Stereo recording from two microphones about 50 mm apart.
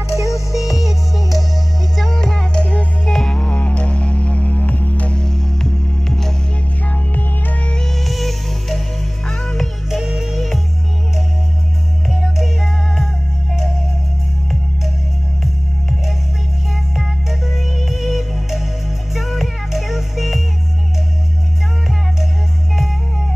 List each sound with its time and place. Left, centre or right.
0.1 s music: left
0.5 s music: centre
2.0 s music: centre; by 2.9 s left
3.1 s music: centre
3.4 s music: left
5.2 s music: centre
6.9 s music: left
7.7 s music: centre
9.8 s music: centre
12.1 s music: centre
16.9 s music: centre